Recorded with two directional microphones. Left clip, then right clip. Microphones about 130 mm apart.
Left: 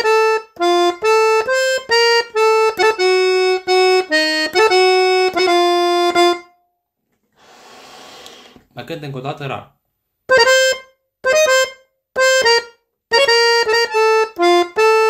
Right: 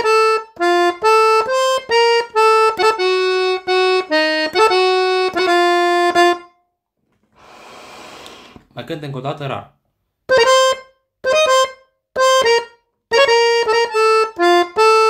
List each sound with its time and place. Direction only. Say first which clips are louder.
0.0 s music: even; 15° right (ahead or behind)
1.4 s accordion: even; 15° right (ahead or behind)
8.7 s speech: right 1 dB; 10° right (ahead or behind)
10.3 s music: even; 15° right (ahead or behind)
13.1 s accordion: even; 15° right (ahead or behind)